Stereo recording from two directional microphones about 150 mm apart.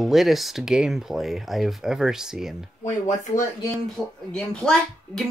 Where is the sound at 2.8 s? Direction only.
55° left (ahead or behind).